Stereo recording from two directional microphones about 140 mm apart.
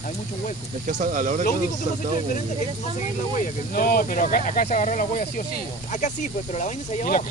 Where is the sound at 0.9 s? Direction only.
60° right (ahead or behind).